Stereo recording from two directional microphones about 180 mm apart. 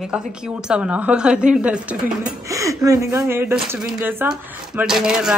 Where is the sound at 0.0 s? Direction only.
5° right (ahead or behind).